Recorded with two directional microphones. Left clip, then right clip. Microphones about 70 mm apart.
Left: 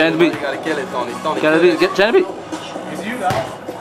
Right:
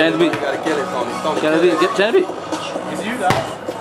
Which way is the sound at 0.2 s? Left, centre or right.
Left.